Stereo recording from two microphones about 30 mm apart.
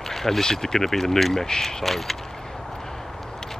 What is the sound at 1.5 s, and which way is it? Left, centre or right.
Speech, left.